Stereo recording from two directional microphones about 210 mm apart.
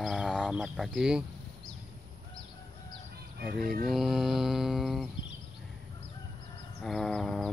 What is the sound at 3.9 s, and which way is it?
Speech, centre (ahead or behind).